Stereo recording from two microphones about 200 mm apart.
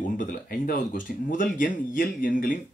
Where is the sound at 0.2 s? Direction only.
45° left (ahead or behind).